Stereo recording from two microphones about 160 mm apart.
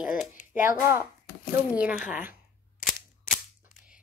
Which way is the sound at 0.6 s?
15° right (ahead or behind).